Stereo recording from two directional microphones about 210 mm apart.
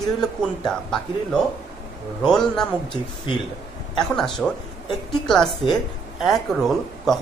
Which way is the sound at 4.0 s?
Centre (ahead or behind).